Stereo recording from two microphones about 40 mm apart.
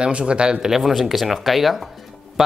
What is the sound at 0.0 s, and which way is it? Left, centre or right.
Speech, right.